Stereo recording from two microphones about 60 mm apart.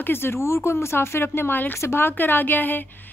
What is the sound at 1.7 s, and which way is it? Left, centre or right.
Speech, left.